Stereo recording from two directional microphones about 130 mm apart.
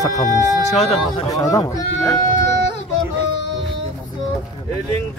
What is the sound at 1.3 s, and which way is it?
Speech, 25° left (ahead or behind).